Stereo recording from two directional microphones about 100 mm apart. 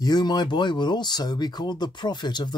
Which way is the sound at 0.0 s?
45° left (ahead or behind).